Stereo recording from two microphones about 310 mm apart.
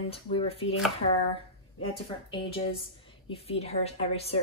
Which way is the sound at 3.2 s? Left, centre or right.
Centre.